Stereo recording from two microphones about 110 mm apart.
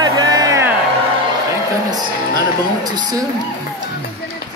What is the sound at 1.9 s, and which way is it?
Music, 35° right (ahead or behind).